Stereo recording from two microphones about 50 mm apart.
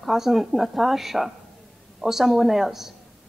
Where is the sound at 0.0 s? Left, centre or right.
Centre.